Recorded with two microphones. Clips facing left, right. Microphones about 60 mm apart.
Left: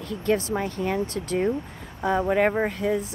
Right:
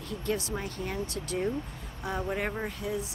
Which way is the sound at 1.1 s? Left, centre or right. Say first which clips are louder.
Left 4 dB; left.